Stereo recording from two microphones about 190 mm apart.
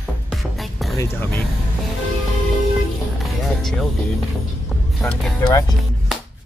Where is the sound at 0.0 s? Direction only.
Centre (ahead or behind).